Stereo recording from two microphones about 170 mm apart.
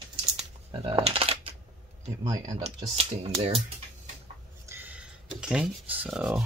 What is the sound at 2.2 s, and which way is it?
Speech, 25° right (ahead or behind).